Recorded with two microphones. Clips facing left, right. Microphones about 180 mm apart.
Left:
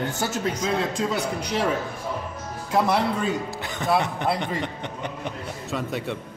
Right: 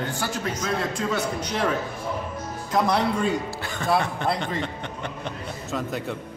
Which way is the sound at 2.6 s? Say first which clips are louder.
Left 1 dB; 5° left (ahead or behind).